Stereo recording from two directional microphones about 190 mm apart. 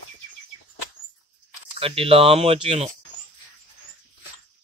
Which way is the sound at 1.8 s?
30° right (ahead or behind).